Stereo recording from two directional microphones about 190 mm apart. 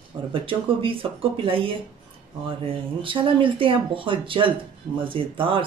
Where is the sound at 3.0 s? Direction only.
25° right (ahead or behind).